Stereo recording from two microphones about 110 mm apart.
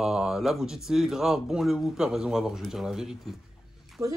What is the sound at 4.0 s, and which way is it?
Speech, 30° right (ahead or behind).